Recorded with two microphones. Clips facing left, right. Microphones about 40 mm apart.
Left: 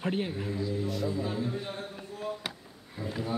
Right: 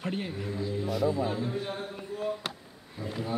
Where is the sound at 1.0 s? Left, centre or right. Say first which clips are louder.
Right 3 dB; centre.